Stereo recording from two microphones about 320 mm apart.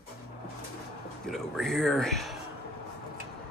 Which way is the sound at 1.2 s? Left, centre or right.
Centre.